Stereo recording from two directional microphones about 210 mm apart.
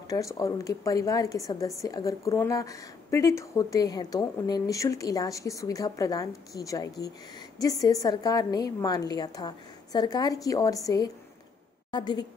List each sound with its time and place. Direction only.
0.1 s a woman's voice: 15° left (ahead or behind)
11.9 s a woman's voice: 20° left (ahead or behind)